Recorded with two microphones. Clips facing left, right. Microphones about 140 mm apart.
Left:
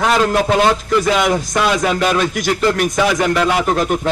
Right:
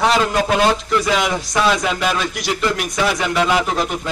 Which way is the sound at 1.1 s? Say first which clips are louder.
Left 3 dB; 50° left (ahead or behind).